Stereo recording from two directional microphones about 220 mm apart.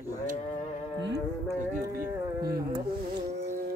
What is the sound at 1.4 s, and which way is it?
Speech, 15° right (ahead or behind).